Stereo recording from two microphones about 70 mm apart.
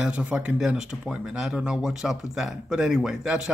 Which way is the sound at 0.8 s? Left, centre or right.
Centre.